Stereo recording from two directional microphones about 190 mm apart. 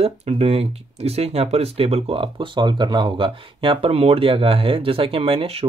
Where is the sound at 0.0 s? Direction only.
30° right (ahead or behind).